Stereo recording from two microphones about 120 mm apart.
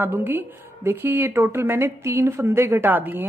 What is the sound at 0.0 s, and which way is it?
Speech, 15° right (ahead or behind).